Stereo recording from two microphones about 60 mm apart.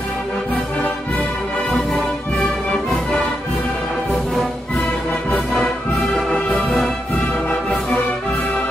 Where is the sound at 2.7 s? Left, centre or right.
Centre.